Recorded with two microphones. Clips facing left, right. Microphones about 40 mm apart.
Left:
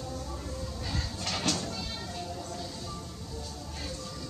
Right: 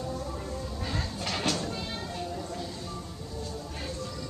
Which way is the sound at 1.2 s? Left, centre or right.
Centre.